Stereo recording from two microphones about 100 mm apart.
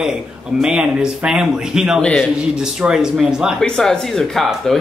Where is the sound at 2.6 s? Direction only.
5° right (ahead or behind).